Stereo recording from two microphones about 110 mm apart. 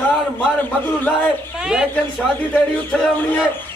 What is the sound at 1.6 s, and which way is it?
Speech, 5° right (ahead or behind).